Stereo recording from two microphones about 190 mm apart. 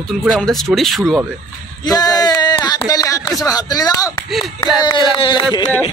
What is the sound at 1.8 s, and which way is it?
Speech, 20° left (ahead or behind).